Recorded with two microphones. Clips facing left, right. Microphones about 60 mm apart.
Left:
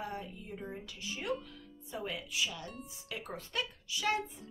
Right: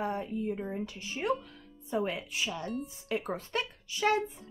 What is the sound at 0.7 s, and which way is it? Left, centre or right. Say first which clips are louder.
Speech: right 6 dB; right.